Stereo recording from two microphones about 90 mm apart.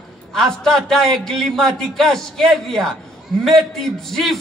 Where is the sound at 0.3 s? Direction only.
5° left (ahead or behind).